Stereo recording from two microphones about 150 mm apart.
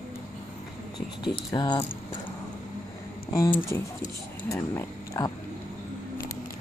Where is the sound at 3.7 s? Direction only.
20° left (ahead or behind).